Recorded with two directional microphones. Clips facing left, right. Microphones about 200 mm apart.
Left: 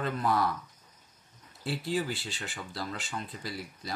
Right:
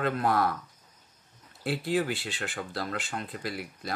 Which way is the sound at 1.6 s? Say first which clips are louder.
Right 4 dB; 60° right (ahead or behind).